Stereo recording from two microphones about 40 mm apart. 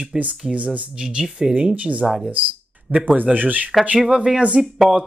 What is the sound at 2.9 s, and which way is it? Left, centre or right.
Speech, centre.